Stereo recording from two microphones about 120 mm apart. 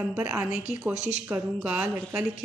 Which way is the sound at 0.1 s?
15° right (ahead or behind).